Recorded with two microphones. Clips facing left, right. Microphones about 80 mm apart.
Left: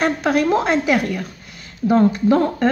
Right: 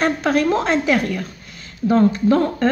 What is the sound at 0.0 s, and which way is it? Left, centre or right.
A woman's voice, centre.